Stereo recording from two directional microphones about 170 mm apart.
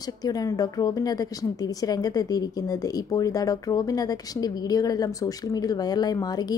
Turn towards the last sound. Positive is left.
turn(degrees=25)  # may be behind; listen again after turning